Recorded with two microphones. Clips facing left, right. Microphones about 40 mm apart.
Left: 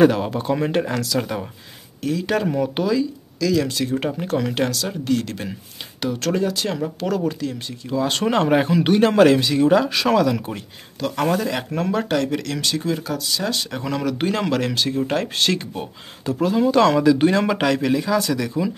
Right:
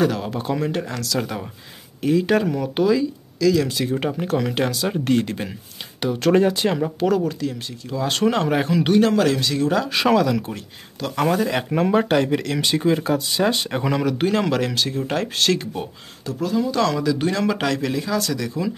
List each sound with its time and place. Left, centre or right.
0.3 s speech: centre
0.6 s speech: centre
1.0 s speech: centre
2.0 s speech: centre
2.4 s speech: centre
2.8 s speech: centre
7.2 s speech: centre
9.1 s speech: left
9.4 s speech: centre
9.9 s speech: centre; by 13.8 s right
13.8 s speech: centre
16.3 s speech: left; by 18.7 s centre